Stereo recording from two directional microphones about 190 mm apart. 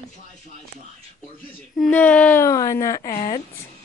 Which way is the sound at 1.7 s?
5° left (ahead or behind).